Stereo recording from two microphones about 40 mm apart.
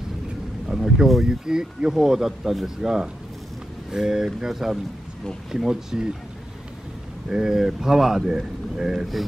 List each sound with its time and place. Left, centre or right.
0.7 s speech: centre
7.2 s speech: centre